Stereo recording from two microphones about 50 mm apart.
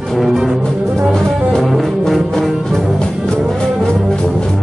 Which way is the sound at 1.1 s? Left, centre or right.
Centre.